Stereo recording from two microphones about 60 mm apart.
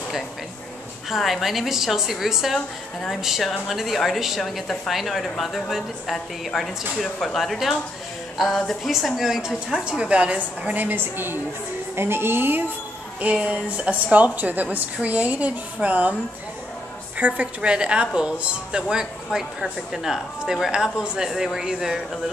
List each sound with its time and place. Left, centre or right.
1.1 s speech: centre
9.8 s a woman's voice: centre; by 12.7 s right
13.2 s a woman's voice: right
17.2 s a woman's voice: right; by 22.2 s centre